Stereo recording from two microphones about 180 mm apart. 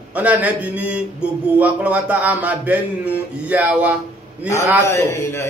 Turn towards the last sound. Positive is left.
turn(degrees=15)  # may be behind; listen again after turning